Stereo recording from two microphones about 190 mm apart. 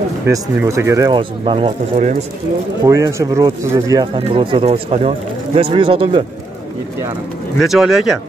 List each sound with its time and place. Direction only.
0.3 s speech: 15° right (ahead or behind)
1.4 s speech: 30° right (ahead or behind)
2.8 s speech: 15° right (ahead or behind)
7.6 s speech: centre (ahead or behind)